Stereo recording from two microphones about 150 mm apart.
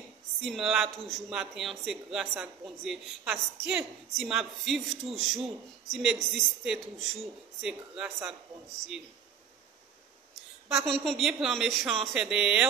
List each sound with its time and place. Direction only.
0.4 s a woman's voice: centre (ahead or behind)
10.7 s a woman's voice: centre (ahead or behind)